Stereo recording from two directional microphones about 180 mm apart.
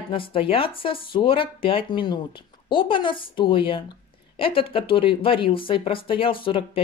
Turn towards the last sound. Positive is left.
turn(degrees=30)  # may be behind; listen again after turning